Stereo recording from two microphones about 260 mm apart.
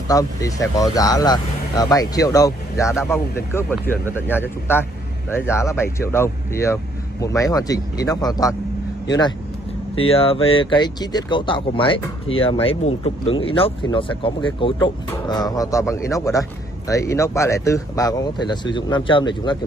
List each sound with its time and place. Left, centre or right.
0.1 s speech: centre
9.9 s speech: left